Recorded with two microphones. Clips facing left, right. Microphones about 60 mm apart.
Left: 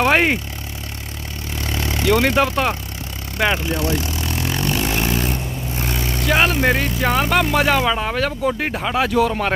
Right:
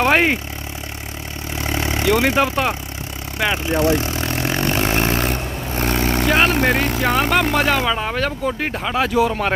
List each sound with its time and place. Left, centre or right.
0.0 s a sound: centre
1.5 s vehicle: right
2.0 s speech: centre
3.7 s vehicle: right
6.2 s speech: centre